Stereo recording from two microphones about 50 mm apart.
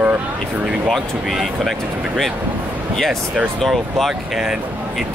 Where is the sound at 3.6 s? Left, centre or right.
Centre.